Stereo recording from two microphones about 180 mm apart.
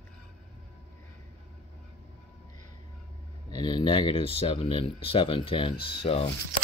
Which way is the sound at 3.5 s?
25° left (ahead or behind).